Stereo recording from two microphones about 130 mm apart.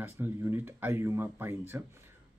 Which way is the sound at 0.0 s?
15° right (ahead or behind).